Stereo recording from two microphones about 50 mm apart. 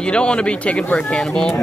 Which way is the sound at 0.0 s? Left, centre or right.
Centre.